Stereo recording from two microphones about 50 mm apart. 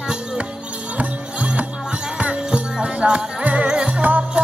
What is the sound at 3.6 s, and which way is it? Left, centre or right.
Jingle bell, centre.